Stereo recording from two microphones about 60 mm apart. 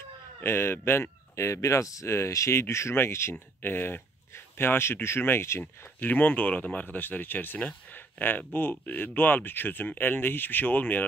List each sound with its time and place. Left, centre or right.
0.4 s speech: left
5.6 s speech: left